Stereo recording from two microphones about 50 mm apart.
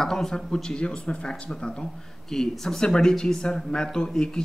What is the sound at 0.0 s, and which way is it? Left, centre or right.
Speech, centre.